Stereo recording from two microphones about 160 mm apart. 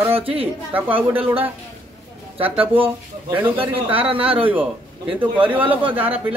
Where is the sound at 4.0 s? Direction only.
35° right (ahead or behind).